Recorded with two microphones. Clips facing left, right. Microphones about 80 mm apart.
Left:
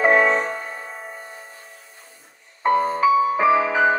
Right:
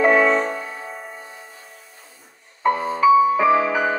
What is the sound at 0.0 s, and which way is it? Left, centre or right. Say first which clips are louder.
Music: right 1 dB; centre.